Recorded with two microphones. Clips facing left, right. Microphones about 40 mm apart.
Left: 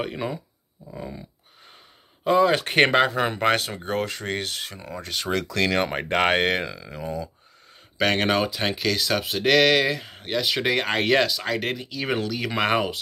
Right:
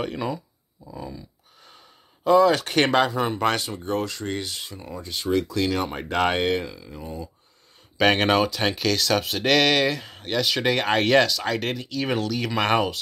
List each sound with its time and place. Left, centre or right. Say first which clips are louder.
0.0 s speech: even; centre
0.9 s speech: even; left
1.6 s a sound: even; left
3.5 s speech: left 1 dB; left
4.7 s speech: left 2 dB; left
6.6 s speech: left 3 dB; left
8.0 s speech: right 2 dB; centre